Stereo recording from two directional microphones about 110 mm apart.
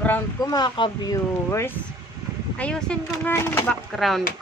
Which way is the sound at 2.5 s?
10° left (ahead or behind).